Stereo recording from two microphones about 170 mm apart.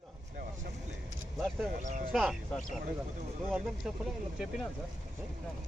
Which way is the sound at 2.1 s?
Centre (ahead or behind).